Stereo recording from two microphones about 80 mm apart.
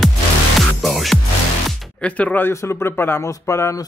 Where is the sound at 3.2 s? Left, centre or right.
Left.